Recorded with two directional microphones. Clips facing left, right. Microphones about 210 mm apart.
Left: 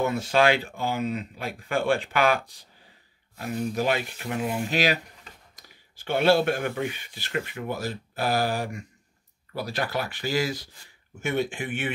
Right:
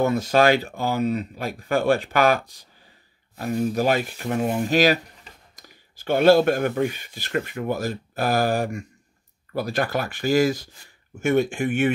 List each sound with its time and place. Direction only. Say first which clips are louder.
0.0 s speech: right 4 dB; 40° right (ahead or behind)
3.7 s speech: right 4 dB; 40° right (ahead or behind)